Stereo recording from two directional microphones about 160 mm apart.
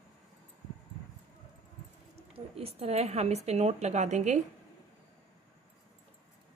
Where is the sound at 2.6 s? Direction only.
40° right (ahead or behind).